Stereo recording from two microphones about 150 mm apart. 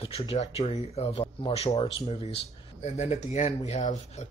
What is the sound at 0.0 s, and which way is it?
Speech, 40° left (ahead or behind).